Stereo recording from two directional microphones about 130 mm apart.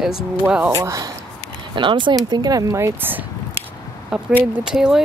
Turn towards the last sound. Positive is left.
turn(degrees=-5)  # may be behind; listen again after turning